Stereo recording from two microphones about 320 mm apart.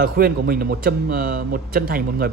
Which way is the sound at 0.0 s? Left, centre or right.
Right.